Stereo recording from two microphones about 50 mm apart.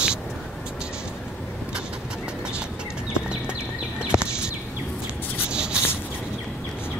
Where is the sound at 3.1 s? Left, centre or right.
Centre.